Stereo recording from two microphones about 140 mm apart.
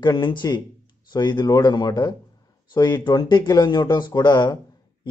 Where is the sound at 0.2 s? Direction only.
35° left (ahead or behind).